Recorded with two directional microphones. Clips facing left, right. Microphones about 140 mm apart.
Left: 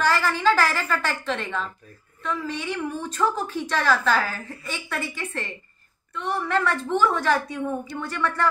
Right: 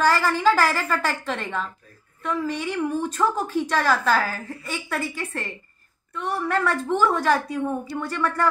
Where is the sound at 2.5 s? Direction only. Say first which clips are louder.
Right 3 dB; 45° right (ahead or behind).